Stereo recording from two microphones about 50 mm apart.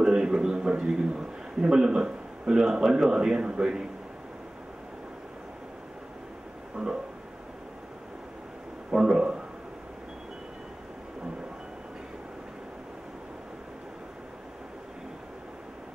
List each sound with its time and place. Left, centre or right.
0.0 s a man's voice: centre
6.8 s a sound: centre
8.9 s speech: centre